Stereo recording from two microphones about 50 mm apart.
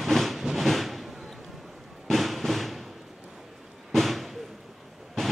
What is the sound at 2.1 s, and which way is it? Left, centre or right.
Music, centre.